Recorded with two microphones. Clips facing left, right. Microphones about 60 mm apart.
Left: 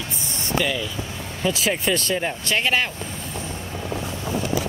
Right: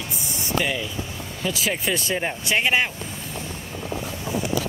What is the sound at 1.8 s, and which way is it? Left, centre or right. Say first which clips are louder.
Speech: left 2 dB; centre.